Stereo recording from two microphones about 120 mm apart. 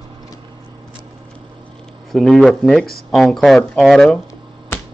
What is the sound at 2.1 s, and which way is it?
Speech, centre (ahead or behind).